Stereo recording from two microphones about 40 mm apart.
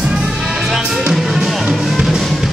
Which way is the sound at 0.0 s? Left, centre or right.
Right.